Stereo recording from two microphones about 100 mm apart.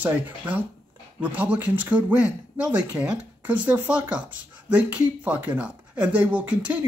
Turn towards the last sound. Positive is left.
turn(degrees=-15)  # may be behind; listen again after turning